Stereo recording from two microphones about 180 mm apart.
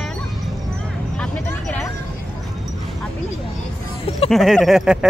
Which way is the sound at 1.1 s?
5° left (ahead or behind).